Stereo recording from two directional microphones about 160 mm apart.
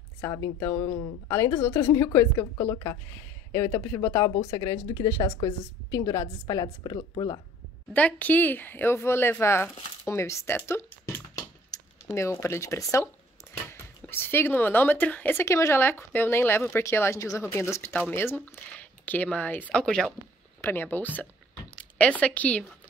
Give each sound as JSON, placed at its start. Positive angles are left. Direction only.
{"t": 0.2, "sound": "speech", "side_deg": 20}
{"t": 7.9, "sound": "speech", "side_deg": 10}
{"t": 12.1, "sound": "speech", "side_deg": 15}